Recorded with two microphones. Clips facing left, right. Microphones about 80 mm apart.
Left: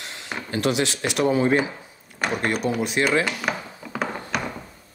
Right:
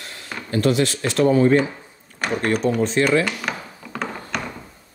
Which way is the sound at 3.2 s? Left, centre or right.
Centre.